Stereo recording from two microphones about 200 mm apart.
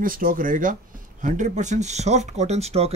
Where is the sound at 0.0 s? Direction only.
45° right (ahead or behind).